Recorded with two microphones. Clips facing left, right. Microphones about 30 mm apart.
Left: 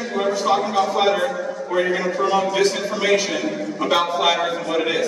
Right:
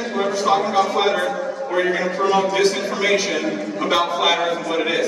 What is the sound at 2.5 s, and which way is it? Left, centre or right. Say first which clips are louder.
A man's voice: right 1 dB; centre.